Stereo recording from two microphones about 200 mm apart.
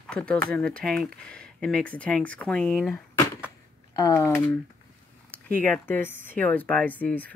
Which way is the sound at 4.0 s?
15° left (ahead or behind).